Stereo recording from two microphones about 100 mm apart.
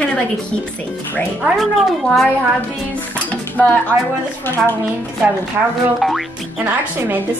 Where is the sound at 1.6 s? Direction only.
5° left (ahead or behind).